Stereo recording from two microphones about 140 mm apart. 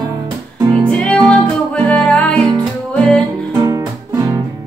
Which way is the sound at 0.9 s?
10° left (ahead or behind).